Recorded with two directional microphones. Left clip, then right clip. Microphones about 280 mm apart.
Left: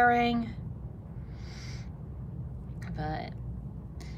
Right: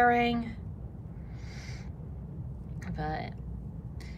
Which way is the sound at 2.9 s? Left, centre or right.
Centre.